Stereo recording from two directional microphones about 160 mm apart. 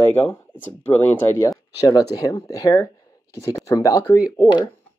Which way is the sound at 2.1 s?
20° left (ahead or behind).